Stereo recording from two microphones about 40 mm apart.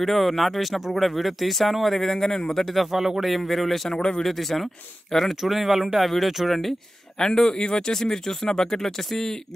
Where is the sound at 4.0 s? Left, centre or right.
Left.